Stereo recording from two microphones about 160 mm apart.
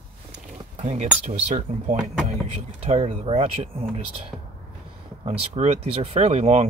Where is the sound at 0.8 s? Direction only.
45° right (ahead or behind).